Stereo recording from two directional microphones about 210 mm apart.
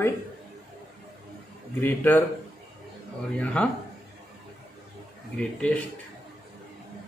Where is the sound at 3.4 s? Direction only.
5° left (ahead or behind).